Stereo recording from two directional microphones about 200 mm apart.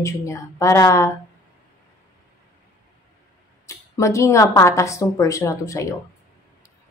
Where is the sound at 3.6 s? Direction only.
15° left (ahead or behind).